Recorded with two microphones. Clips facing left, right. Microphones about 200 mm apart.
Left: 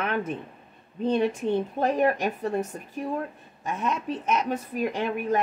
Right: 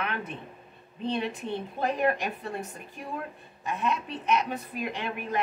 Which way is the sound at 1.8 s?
40° left (ahead or behind).